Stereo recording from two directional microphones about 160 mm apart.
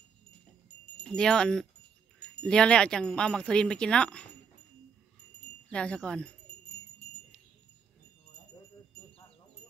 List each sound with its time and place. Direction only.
1.0 s wind chime: 5° left (ahead or behind)
5.7 s speech: 5° left (ahead or behind)